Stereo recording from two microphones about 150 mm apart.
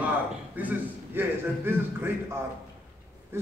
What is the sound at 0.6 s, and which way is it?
A man's voice, 10° right (ahead or behind).